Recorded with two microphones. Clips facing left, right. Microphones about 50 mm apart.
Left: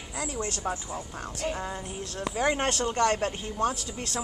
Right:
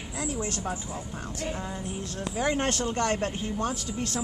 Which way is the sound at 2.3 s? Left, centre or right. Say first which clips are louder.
Left 1 dB; centre.